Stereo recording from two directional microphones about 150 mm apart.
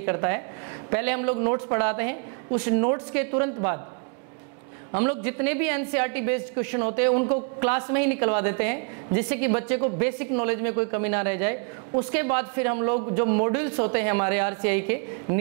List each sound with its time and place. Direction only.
0.0 s a woman's voice: 15° right (ahead or behind)
4.9 s a woman's voice: 15° right (ahead or behind)